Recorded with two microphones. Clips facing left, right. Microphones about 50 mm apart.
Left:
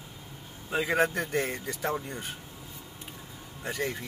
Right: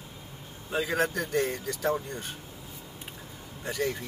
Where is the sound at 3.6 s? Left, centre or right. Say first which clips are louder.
Right 2 dB; centre.